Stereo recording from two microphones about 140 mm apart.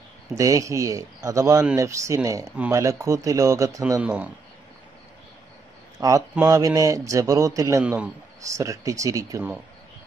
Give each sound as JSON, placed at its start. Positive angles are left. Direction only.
{"t": 0.4, "sound": "a man's voice", "side_deg": -25}
{"t": 4.0, "sound": "speech", "side_deg": -10}
{"t": 5.9, "sound": "a man's voice", "side_deg": -25}
{"t": 7.8, "sound": "speech", "side_deg": -10}
{"t": 8.4, "sound": "a man's voice", "side_deg": -20}